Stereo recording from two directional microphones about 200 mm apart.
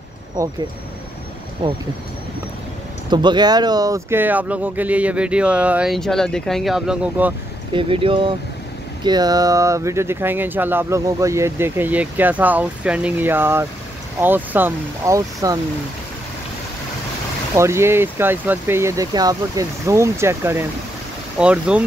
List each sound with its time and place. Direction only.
0.4 s speech: 15° right (ahead or behind)
1.6 s speech: 25° right (ahead or behind)
3.1 s speech: 20° right (ahead or behind); by 7.3 s 5° right (ahead or behind)
7.7 s speech: 25° right (ahead or behind)
17.6 s speech: 15° right (ahead or behind)